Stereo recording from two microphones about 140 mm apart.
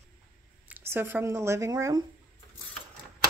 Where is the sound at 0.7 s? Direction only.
15° right (ahead or behind).